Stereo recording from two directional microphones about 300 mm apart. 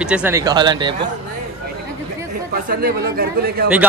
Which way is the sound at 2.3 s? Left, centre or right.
Right.